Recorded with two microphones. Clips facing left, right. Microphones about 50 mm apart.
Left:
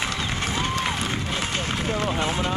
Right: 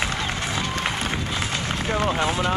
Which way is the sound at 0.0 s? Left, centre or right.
Right.